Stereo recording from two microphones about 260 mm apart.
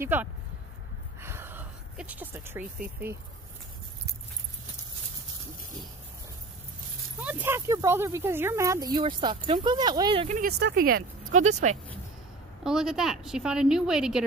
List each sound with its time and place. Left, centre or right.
0.0 s speech: centre
1.2 s a sound: centre
7.2 s speech: centre
10.2 s speech: right
12.6 s a woman's voice: centre